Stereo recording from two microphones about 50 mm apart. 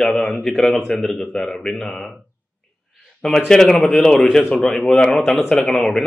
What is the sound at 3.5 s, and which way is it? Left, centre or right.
A man's voice, centre.